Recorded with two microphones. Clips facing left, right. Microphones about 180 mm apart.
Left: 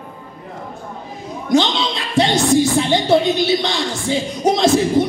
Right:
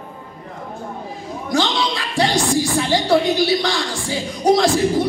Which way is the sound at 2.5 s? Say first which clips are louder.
Left 3 dB; 20° left (ahead or behind).